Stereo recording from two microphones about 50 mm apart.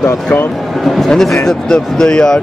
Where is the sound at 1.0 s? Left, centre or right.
Centre.